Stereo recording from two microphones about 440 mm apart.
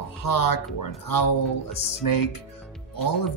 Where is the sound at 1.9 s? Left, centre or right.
Left.